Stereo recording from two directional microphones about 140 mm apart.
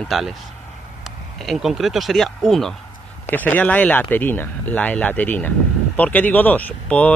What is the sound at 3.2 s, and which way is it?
Speech, 15° left (ahead or behind).